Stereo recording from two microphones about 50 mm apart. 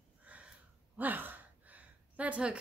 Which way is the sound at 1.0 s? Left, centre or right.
Right.